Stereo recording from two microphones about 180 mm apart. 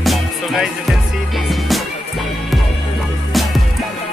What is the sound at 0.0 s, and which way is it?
Music, centre (ahead or behind).